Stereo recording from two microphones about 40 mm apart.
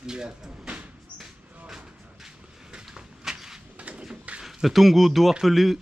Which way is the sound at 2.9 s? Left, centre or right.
Centre.